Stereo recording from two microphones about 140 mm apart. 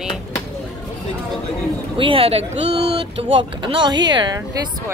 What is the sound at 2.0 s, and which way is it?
Speech, 40° right (ahead or behind).